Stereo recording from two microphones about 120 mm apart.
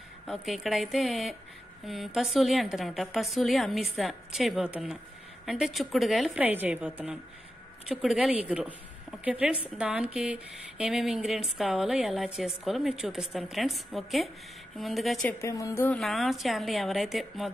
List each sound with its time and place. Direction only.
0.3 s a woman's voice: centre (ahead or behind)
6.4 s a woman's voice: 15° right (ahead or behind)
15.4 s a woman's voice: 25° left (ahead or behind)
16.0 s a woman's voice: centre (ahead or behind)